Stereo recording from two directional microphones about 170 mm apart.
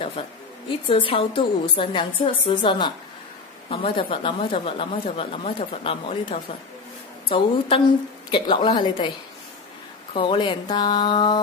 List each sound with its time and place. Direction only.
0.8 s speech: 30° left (ahead or behind)
10.1 s speech: 30° left (ahead or behind)